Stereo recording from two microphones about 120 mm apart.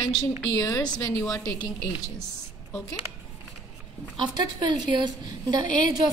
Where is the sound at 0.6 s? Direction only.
30° left (ahead or behind).